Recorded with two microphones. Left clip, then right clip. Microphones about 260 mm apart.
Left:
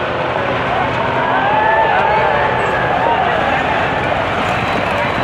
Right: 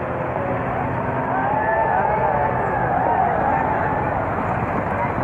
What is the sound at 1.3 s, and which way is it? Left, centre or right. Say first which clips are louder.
Vehicle: left 6 dB; left.